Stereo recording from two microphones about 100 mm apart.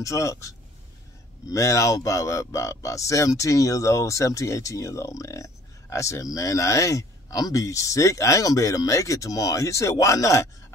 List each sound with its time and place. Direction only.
0.0 s speech: 30° left (ahead or behind)